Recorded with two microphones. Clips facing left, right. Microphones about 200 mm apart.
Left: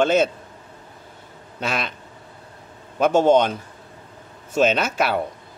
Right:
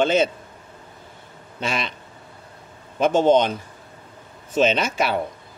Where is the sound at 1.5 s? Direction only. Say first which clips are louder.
Even; 5° left (ahead or behind).